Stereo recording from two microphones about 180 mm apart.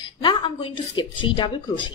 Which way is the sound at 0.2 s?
25° left (ahead or behind).